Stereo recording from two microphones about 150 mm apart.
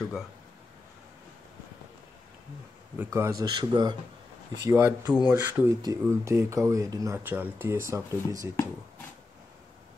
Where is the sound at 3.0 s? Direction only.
20° right (ahead or behind).